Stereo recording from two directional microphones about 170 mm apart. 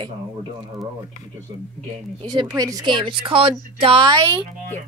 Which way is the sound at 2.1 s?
25° right (ahead or behind).